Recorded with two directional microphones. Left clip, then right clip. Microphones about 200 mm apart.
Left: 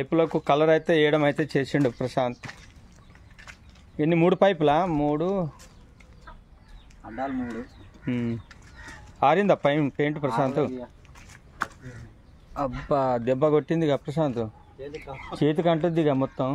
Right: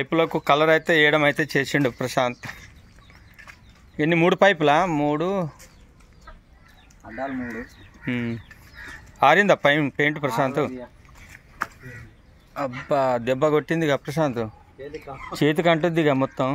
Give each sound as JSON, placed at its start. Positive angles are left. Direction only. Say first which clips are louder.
{"t": 0.0, "sound": "speech", "louder": "right 2 dB", "side_deg": 0}
{"t": 7.0, "sound": "speech", "louder": "right 1 dB", "side_deg": -20}
{"t": 8.0, "sound": "speech", "louder": "right 2 dB", "side_deg": 5}
{"t": 12.5, "sound": "speech", "louder": "right 2 dB", "side_deg": 20}
{"t": 14.8, "sound": "speech", "louder": "right 2 dB", "side_deg": -40}
{"t": 15.3, "sound": "speech", "louder": "right 3 dB", "side_deg": -10}